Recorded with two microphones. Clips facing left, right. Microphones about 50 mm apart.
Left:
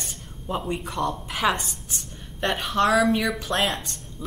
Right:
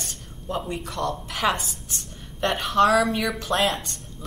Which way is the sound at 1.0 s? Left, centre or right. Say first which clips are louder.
Right 1 dB; centre.